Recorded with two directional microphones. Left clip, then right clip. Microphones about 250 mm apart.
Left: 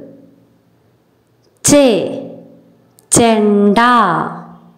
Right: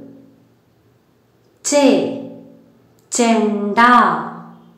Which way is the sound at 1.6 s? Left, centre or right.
Left.